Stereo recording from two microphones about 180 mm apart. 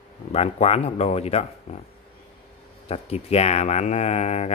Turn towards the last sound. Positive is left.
turn(degrees=35)  # may be behind; listen again after turning